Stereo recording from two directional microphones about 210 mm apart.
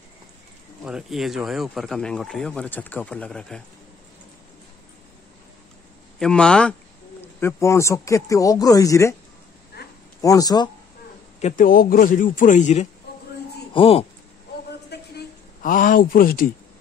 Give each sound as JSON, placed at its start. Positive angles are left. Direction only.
{"t": 0.8, "sound": "speech", "side_deg": 0}
{"t": 6.1, "sound": "speech", "side_deg": 5}
{"t": 9.8, "sound": "a sound", "side_deg": 50}
{"t": 10.2, "sound": "speech", "side_deg": 15}
{"t": 11.4, "sound": "speech", "side_deg": 40}
{"t": 14.9, "sound": "a sound", "side_deg": 45}